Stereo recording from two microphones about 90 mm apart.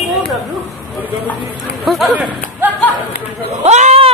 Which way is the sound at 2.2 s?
20° right (ahead or behind).